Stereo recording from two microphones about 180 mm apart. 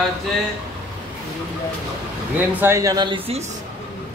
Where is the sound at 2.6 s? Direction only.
15° right (ahead or behind).